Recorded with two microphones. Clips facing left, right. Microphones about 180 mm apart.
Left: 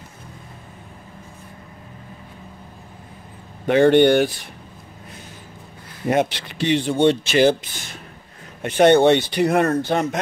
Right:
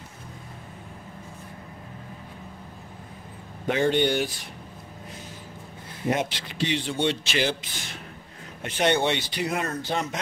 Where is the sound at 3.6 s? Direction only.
60° left (ahead or behind).